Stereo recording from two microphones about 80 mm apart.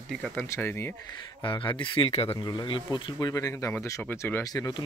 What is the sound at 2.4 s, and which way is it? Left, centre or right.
Speech, left.